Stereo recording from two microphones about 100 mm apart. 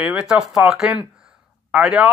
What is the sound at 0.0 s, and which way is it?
A man's voice, 10° right (ahead or behind).